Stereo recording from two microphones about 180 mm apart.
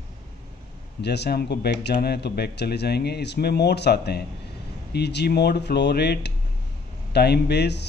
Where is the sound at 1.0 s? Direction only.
70° left (ahead or behind).